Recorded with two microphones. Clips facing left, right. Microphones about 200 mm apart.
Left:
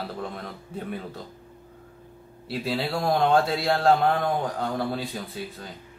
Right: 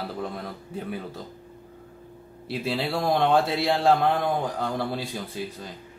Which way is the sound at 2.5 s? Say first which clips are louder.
Even; centre (ahead or behind).